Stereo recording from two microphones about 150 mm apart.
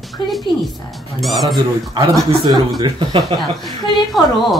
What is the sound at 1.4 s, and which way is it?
Speech, 30° right (ahead or behind).